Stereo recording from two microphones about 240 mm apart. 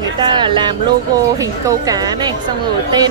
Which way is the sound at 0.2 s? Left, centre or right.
Centre.